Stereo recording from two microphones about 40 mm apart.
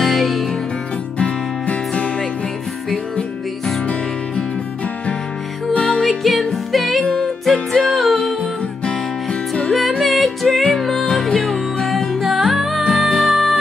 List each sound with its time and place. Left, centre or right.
0.0 s music: centre
1.2 s music: left
6.0 s music: centre
7.0 s music: centre
8.4 s music: left
9.7 s music: centre